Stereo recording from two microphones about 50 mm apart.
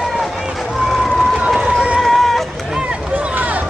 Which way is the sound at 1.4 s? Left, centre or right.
Centre.